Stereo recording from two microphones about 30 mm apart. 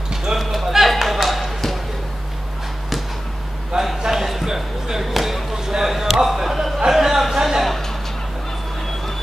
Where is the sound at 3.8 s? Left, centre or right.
Centre.